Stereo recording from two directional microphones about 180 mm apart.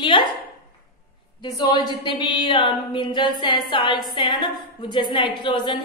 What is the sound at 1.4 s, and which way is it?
Speech, 25° left (ahead or behind).